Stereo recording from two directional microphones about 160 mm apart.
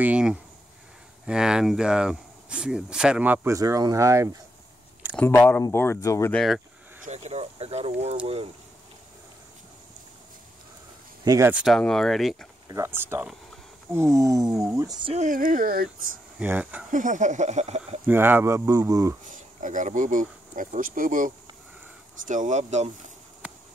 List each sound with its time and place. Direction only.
0.0 s speech: 5° right (ahead or behind)
5.1 s speech: 15° left (ahead or behind)
6.3 s speech: centre (ahead or behind)
7.1 s speech: 45° right (ahead or behind)
11.2 s speech: 20° right (ahead or behind)
11.5 s speech: centre (ahead or behind)
12.6 s speech: 20° right (ahead or behind)
15.1 s speech: 55° right (ahead or behind)
16.3 s speech: 10° right (ahead or behind)
16.9 s speech: 55° right (ahead or behind)
18.0 s speech: 10° right (ahead or behind)
19.2 s speech: 55° right (ahead or behind)